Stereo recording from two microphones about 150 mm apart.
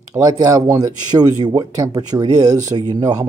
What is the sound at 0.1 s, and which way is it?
Speech, 25° right (ahead or behind).